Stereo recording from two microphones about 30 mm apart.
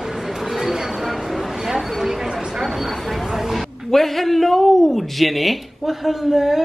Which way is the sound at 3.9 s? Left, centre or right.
Centre.